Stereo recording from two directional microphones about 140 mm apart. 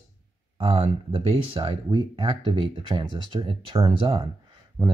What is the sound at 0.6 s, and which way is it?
Speech, 40° right (ahead or behind).